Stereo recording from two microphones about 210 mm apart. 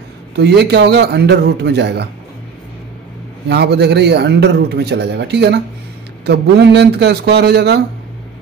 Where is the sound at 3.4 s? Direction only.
55° right (ahead or behind).